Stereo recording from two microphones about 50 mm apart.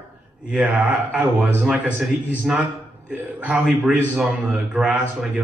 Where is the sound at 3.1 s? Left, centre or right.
Right.